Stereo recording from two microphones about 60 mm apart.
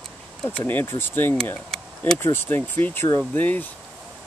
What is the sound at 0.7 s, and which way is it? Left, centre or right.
Speech, left.